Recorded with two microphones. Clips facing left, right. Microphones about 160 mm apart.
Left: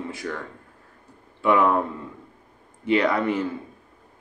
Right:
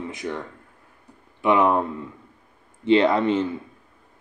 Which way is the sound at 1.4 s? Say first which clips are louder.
Right 1 dB; 20° right (ahead or behind).